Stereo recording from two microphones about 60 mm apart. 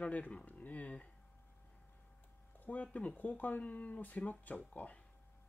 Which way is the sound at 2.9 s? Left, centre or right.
Left.